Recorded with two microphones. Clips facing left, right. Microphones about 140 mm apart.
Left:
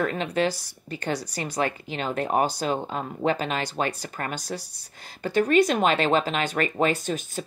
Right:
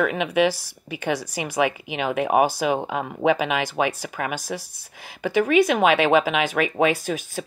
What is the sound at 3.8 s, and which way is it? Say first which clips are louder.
Speech: right 4 dB; 10° right (ahead or behind).